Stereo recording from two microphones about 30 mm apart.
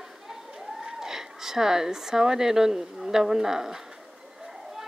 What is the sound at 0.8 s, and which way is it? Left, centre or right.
Speech, centre.